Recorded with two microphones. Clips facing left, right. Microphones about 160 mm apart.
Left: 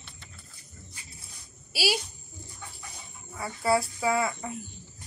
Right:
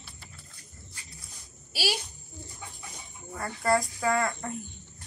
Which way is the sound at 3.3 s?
5° left (ahead or behind).